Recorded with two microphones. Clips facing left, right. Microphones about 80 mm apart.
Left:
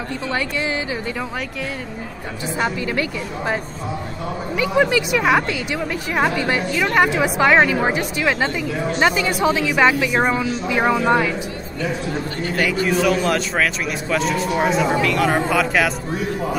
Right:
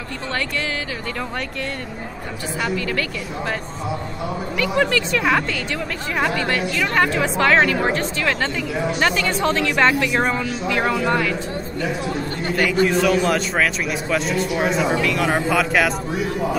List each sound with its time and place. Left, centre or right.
2.6 s speech: centre
4.6 s speech: centre
12.8 s a man's voice: centre